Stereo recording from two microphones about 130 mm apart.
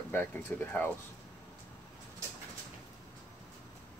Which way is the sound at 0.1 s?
15° left (ahead or behind).